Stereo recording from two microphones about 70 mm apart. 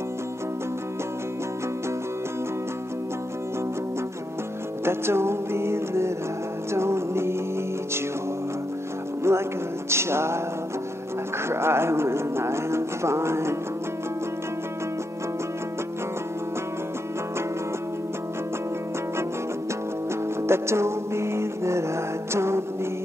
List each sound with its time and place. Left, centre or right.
4.8 s music: right
9.3 s music: right
9.8 s speech: right
11.4 s speech: right
20.4 s music: right